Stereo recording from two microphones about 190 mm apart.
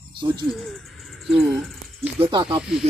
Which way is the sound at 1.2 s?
Centre (ahead or behind).